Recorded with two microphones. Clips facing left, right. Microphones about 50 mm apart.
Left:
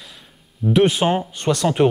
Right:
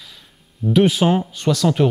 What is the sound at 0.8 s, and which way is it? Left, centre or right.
Speech, centre.